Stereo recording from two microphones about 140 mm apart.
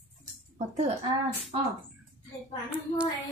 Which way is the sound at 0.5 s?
55° right (ahead or behind).